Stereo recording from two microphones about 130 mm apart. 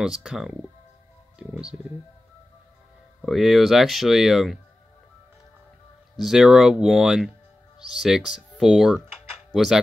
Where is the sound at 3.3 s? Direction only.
Centre (ahead or behind).